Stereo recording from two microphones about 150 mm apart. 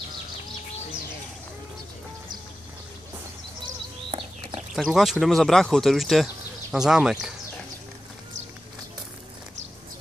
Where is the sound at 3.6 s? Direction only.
35° right (ahead or behind).